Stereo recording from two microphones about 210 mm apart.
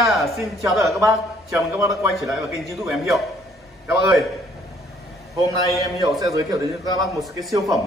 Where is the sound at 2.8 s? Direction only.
Centre (ahead or behind).